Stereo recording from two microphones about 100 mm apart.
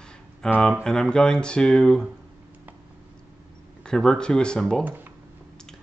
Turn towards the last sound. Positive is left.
turn(degrees=5)  # may be behind; listen again after turning